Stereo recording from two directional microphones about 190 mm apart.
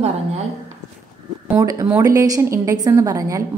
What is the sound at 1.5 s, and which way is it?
A woman's voice, 10° right (ahead or behind).